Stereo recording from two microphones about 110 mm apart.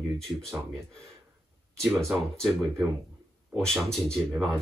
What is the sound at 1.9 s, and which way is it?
Speech, centre (ahead or behind).